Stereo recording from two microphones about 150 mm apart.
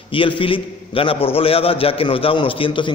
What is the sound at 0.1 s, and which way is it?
A man's voice, 35° left (ahead or behind).